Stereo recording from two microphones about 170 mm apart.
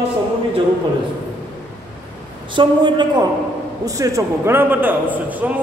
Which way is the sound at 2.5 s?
30° right (ahead or behind).